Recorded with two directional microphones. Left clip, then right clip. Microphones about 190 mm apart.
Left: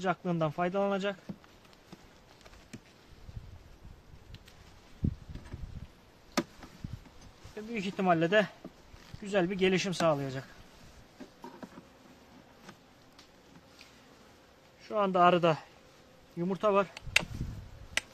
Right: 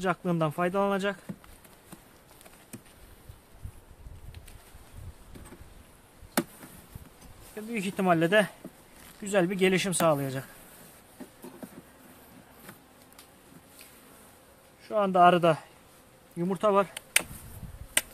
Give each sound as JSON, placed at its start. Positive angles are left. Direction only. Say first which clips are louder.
{"t": 0.0, "sound": "speech", "louder": "right 3 dB", "side_deg": -15}
{"t": 7.5, "sound": "speech", "louder": "right 3 dB", "side_deg": -10}
{"t": 14.9, "sound": "speech", "louder": "right 4 dB", "side_deg": 20}
{"t": 16.3, "sound": "speech", "louder": "right 3 dB", "side_deg": 0}